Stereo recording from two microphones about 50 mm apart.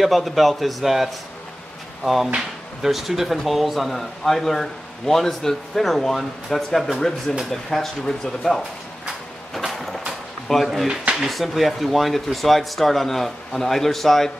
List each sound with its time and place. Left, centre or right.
0.0 s speech: centre
2.8 s speech: centre
9.7 s a sound: centre
10.5 s speech: centre
10.9 s speech: centre
11.2 s speech: centre